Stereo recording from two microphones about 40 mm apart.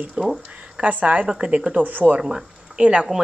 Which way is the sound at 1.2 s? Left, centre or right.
Right.